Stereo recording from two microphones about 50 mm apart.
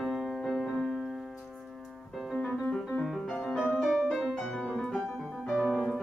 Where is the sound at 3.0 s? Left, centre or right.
Centre.